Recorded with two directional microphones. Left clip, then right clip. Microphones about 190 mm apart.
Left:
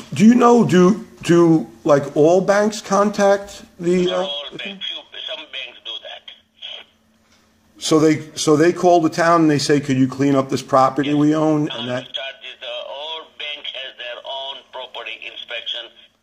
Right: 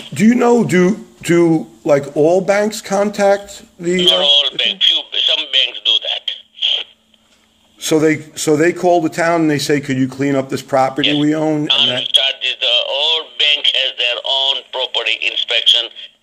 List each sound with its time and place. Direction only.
0.2 s speech: 5° right (ahead or behind)
4.0 s radio: 50° right (ahead or behind)
7.8 s a man's voice: 5° right (ahead or behind)
11.6 s speech: 50° right (ahead or behind)
12.0 s radio: 50° right (ahead or behind)